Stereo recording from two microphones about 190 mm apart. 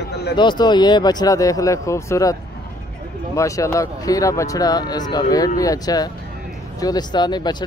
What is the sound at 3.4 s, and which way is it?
Speech, 15° left (ahead or behind).